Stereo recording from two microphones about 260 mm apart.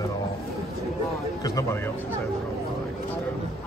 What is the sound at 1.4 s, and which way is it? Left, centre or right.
Speech, centre.